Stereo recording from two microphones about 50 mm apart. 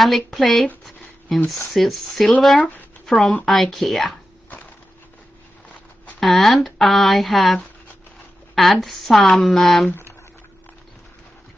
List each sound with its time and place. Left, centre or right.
0.0 s a woman's voice: centre
6.1 s speech: centre
8.5 s speech: centre
9.8 s speech: left